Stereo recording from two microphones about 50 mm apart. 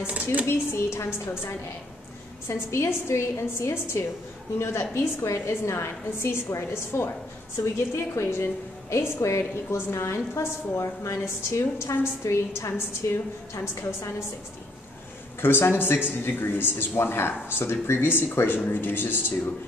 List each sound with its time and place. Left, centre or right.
0.0 s speech: right
0.7 s a woman's voice: left
2.4 s a woman's voice: left
8.9 s a woman's voice: left
15.4 s speech: left